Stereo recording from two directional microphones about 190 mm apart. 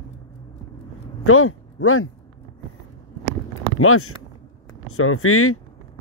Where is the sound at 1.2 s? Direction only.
90° left.